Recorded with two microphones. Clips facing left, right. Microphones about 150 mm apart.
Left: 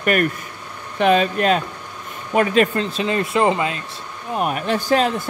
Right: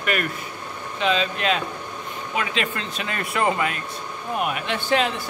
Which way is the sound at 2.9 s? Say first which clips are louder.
Left 6 dB; 25° left (ahead or behind).